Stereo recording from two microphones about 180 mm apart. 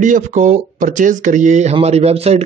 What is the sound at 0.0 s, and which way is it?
A man's voice, 45° right (ahead or behind).